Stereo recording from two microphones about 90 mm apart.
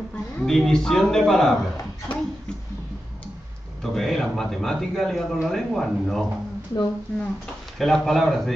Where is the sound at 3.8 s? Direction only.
5° left (ahead or behind).